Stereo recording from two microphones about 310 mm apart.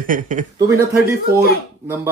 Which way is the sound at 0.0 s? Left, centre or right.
Right.